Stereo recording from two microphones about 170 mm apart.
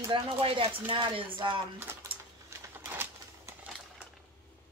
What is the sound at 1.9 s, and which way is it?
Speech, 15° right (ahead or behind).